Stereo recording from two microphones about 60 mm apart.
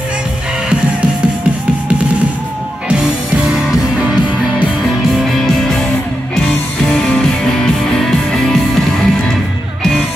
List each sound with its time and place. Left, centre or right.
2.9 s music: centre
5.1 s music: centre
6.4 s music: centre